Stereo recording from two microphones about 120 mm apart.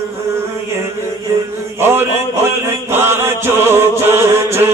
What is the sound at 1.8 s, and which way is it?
Mantra, 20° right (ahead or behind).